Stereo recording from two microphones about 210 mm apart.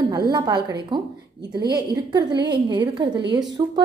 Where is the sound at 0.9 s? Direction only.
20° right (ahead or behind).